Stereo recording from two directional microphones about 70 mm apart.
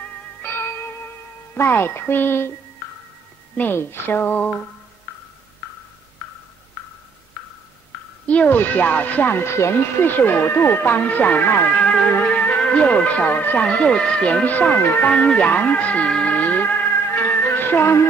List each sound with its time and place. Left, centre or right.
1.5 s speech: left
3.5 s speech: left
8.3 s speech: left
15.0 s speech: centre
16.1 s music: centre